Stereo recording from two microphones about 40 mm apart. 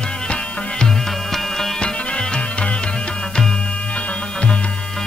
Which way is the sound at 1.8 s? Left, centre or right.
Left.